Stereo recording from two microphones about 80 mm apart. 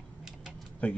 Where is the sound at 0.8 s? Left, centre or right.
Centre.